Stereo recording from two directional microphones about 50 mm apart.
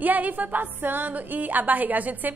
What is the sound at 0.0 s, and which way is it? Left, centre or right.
A woman's voice, right.